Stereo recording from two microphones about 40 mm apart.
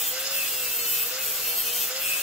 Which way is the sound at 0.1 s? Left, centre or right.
Right.